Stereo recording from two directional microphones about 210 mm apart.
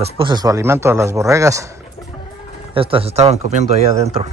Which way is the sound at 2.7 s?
25° right (ahead or behind).